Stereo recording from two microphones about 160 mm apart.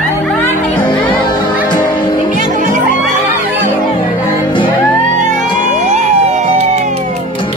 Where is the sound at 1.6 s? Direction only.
25° left (ahead or behind).